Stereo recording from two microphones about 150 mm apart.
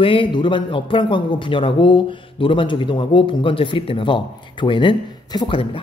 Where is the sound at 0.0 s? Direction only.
35° left (ahead or behind).